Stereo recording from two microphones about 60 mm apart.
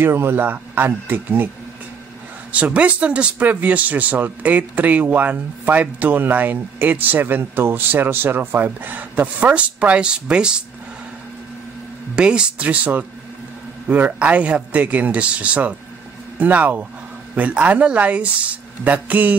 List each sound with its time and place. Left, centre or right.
0.0 s speech: right
2.5 s speech: right
12.2 s speech: centre